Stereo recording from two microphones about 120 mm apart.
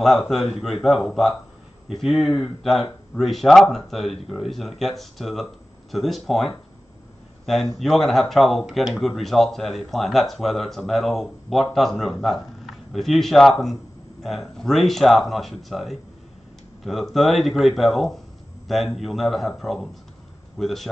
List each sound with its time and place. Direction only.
0.0 s speech: centre (ahead or behind)